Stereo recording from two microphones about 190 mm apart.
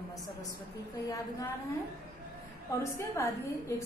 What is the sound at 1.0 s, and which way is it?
Speech, 15° left (ahead or behind).